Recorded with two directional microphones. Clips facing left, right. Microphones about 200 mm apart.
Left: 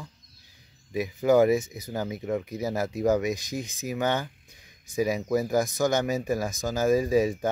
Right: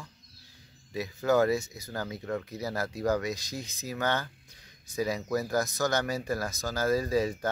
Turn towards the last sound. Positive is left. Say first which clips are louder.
# left 5 dB
turn(degrees=15)  # may be behind; listen again after turning